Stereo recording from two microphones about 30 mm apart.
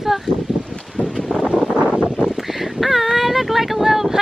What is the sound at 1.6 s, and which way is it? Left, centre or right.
Wind noise, right.